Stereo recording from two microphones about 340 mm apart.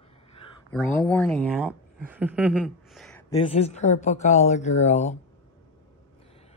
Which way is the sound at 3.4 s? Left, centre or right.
Centre.